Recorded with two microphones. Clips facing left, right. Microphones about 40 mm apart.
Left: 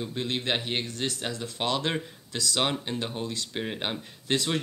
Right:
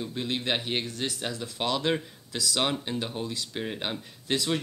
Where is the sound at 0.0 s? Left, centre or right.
Centre.